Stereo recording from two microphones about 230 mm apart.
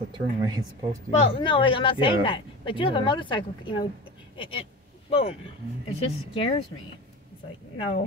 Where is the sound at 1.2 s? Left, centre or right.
Left.